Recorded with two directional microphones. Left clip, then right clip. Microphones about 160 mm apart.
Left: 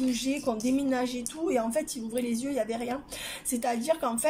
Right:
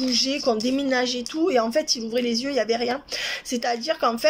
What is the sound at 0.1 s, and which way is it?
Speech, 25° left (ahead or behind).